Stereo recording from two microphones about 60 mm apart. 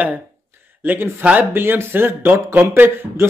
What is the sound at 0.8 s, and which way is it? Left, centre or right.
A man's voice, right.